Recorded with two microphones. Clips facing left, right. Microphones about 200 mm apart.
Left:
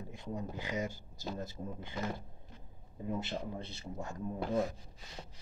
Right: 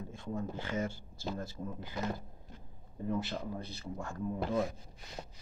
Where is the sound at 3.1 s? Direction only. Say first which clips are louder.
Right 2 dB; 25° left (ahead or behind).